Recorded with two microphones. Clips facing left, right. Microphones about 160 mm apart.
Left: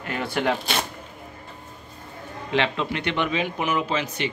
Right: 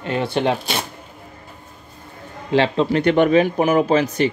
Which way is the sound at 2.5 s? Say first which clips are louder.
Right 8 dB; 35° right (ahead or behind).